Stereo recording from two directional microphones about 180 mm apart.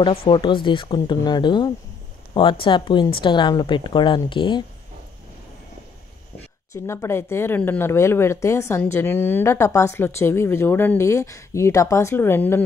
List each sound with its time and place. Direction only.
0.0 s a woman's voice: 30° left (ahead or behind)
6.7 s speech: 15° left (ahead or behind)